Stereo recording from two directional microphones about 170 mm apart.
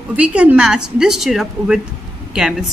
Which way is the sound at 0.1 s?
10° right (ahead or behind).